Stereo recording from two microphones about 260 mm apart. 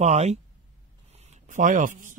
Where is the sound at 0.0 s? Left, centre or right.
Right.